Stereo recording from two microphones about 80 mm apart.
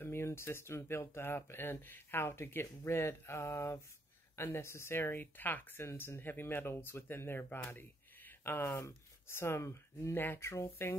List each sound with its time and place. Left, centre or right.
0.0 s speech: left